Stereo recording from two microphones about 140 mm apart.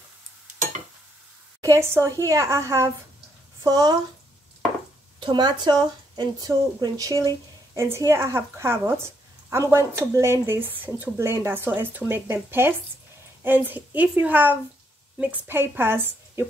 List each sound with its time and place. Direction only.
1.6 s speech: 20° right (ahead or behind)
5.2 s speech: 30° right (ahead or behind); by 16.4 s 15° right (ahead or behind)